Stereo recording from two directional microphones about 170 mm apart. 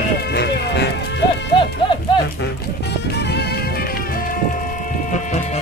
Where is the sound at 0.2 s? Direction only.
75° left (ahead or behind).